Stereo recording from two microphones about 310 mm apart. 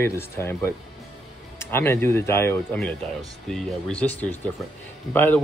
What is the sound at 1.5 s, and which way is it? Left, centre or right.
Speech, centre.